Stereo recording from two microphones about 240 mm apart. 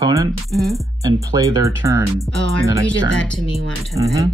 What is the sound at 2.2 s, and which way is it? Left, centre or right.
Speech, centre.